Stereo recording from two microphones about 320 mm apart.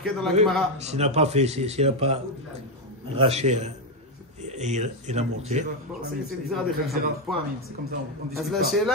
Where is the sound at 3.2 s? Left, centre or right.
Centre.